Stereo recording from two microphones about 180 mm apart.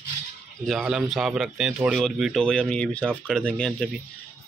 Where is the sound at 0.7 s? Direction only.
Centre (ahead or behind).